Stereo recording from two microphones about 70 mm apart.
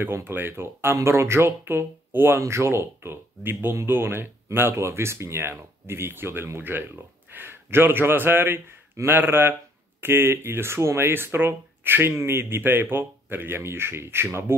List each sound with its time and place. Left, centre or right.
0.0 s speech: right